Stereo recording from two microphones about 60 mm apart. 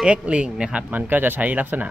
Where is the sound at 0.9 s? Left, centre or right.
Right.